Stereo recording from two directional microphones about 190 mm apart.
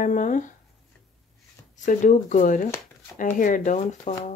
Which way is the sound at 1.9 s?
40° left (ahead or behind).